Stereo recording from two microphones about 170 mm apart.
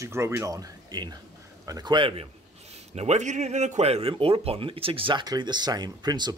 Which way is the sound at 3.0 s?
40° right (ahead or behind).